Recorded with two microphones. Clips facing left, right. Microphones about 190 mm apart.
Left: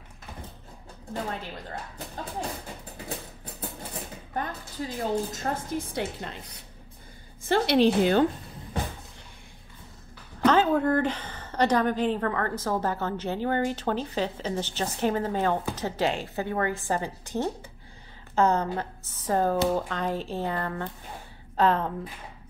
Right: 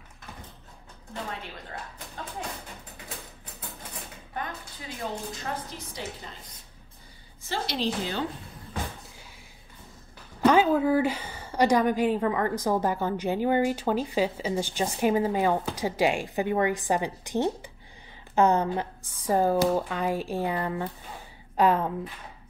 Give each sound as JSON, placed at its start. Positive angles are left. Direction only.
{"t": 4.3, "sound": "a woman's voice", "side_deg": 40}
{"t": 10.4, "sound": "a woman's voice", "side_deg": -10}